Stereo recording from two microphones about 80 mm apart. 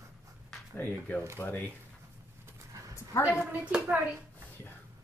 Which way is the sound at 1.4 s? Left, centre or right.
Left.